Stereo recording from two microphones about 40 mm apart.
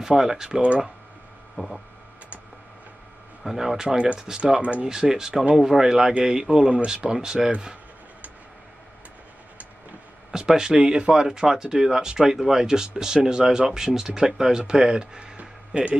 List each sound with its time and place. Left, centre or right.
0.0 s speech: centre
0.6 s speech: right
3.4 s speech: centre
4.4 s speech: right
4.8 s a man's voice: centre
10.3 s speech: centre; by 16.0 s right